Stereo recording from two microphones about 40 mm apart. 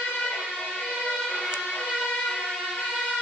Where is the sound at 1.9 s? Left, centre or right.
Centre.